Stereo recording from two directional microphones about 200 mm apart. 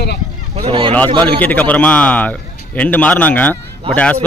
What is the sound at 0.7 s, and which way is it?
Speech, 25° right (ahead or behind).